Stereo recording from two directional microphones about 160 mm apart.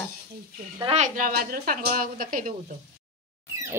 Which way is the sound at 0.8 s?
40° right (ahead or behind).